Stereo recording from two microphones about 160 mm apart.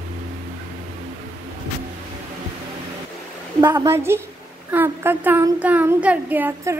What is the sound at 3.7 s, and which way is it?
Speech, 15° right (ahead or behind).